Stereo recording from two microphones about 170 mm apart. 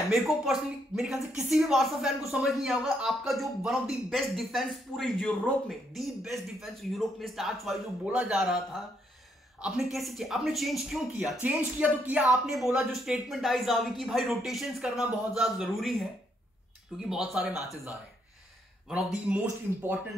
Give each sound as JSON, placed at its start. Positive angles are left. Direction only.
{"t": 0.1, "sound": "a woman's voice", "side_deg": 0}
{"t": 17.1, "sound": "a woman's voice", "side_deg": -5}
{"t": 18.9, "sound": "a woman's voice", "side_deg": -5}